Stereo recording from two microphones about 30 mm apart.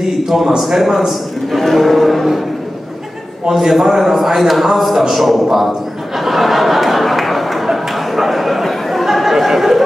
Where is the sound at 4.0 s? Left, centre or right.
Centre.